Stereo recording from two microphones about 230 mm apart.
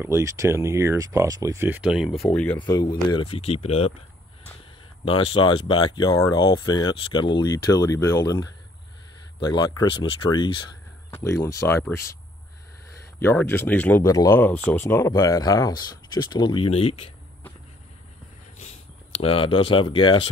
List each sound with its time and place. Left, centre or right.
0.0 s speech: centre
2.6 s speech: centre
5.0 s speech: left
13.2 s speech: centre
19.2 s speech: left